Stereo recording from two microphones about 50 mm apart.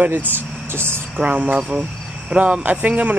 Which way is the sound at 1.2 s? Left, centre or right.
Right.